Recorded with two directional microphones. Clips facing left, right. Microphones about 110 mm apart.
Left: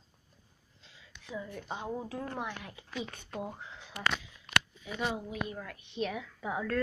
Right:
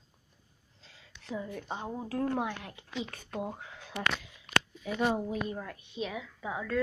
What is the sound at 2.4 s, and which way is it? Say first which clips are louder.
Speech: right 4 dB; 55° right (ahead or behind).